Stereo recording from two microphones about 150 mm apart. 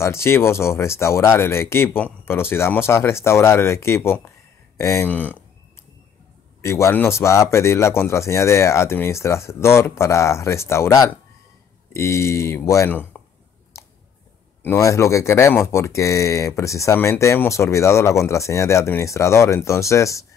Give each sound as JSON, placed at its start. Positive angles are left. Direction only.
{"t": 0.0, "sound": "speech", "side_deg": 15}
{"t": 6.6, "sound": "speech", "side_deg": 20}
{"t": 13.7, "sound": "clicking", "side_deg": 20}
{"t": 14.6, "sound": "speech", "side_deg": 20}